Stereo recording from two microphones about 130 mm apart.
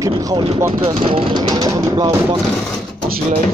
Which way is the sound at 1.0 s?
45° right (ahead or behind).